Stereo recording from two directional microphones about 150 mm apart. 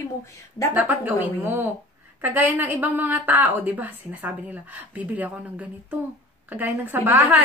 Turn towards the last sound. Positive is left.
turn(degrees=-15)  # may be behind; listen again after turning